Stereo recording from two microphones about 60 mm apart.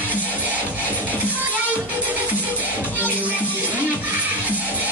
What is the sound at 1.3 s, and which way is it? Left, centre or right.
Music, right.